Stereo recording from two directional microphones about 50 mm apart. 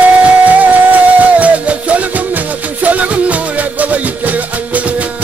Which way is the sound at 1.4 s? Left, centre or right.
Right.